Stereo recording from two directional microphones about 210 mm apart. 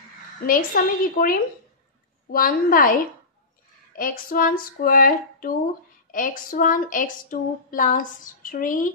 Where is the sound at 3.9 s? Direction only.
45° left (ahead or behind).